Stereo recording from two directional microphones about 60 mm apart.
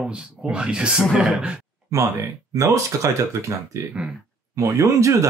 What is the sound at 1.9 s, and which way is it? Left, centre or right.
Speech, right.